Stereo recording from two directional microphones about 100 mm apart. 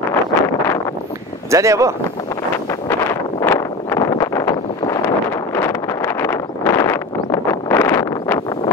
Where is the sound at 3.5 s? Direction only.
35° left (ahead or behind).